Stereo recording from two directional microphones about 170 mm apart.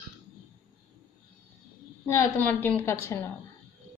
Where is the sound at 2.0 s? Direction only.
15° left (ahead or behind).